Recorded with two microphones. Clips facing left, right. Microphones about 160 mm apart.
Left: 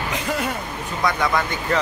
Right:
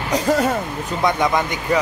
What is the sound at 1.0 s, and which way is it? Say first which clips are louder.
Speech: right 3 dB; 20° right (ahead or behind).